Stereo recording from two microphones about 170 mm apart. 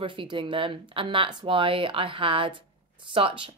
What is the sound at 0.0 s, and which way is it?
Speech, 30° right (ahead or behind).